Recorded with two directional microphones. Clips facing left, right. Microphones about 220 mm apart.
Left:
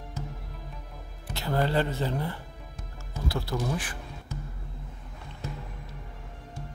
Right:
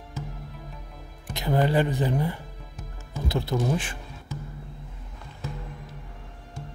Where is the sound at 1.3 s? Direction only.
15° right (ahead or behind).